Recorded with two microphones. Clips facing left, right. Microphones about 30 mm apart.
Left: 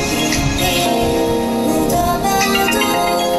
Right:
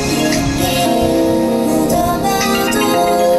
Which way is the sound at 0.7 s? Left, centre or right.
Centre.